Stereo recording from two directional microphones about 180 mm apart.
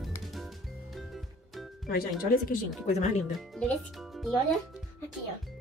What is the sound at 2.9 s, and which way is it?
Speech, 40° left (ahead or behind).